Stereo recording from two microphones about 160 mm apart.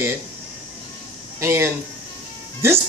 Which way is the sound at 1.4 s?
15° right (ahead or behind).